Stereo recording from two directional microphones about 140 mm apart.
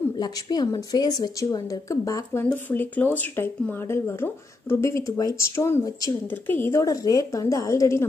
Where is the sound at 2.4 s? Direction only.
10° left (ahead or behind).